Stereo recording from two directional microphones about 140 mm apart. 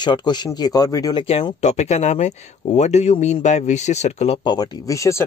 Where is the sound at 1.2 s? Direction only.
45° left (ahead or behind).